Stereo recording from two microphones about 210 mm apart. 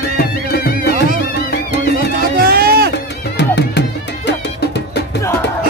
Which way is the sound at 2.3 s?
45° right (ahead or behind).